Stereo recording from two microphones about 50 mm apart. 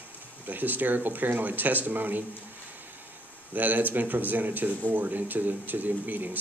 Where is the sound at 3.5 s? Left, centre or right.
Right.